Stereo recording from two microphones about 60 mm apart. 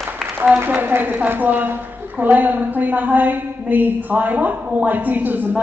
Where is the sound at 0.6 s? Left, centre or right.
Right.